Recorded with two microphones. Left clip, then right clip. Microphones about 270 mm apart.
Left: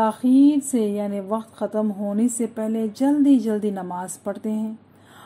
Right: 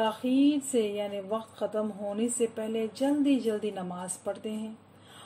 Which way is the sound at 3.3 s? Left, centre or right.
Left.